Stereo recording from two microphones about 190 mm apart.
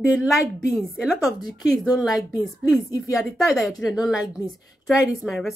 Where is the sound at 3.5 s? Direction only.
5° right (ahead or behind).